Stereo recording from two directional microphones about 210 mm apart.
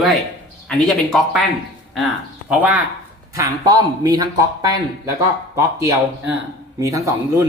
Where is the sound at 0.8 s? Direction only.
Centre (ahead or behind).